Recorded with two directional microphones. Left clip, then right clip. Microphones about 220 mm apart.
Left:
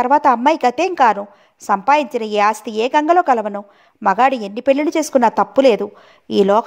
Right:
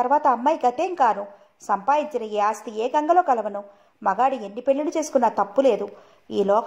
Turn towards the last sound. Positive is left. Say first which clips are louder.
# left 7 dB
turn(degrees=40)  # may be behind; listen again after turning